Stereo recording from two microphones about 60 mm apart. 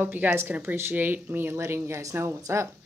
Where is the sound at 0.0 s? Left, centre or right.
Right.